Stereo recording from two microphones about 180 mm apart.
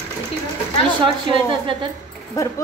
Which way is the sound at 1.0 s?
30° right (ahead or behind).